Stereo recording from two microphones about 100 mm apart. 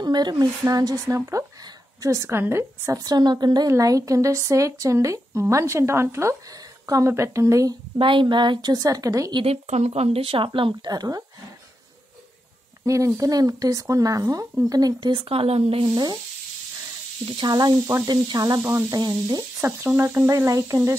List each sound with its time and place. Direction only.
0.0 s a woman's voice: 45° right (ahead or behind); by 3.0 s 25° right (ahead or behind)
3.0 s speech: 45° right (ahead or behind)
8.0 s a woman's voice: 55° right (ahead or behind); by 9.3 s 35° right (ahead or behind)
9.3 s speech: 75° right (ahead or behind); by 11.2 s 40° right (ahead or behind)
12.8 s speech: 35° right (ahead or behind)
15.2 s speech: 80° right
15.9 s a woman's voice: 45° right (ahead or behind)
17.4 s a woman's voice: 45° right (ahead or behind)
18.6 s speech: 25° right (ahead or behind)
18.9 s a woman's voice: 45° right (ahead or behind)
19.6 s speech: 25° right (ahead or behind)